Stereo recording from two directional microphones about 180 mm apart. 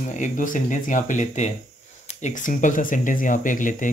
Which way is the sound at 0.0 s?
40° left (ahead or behind).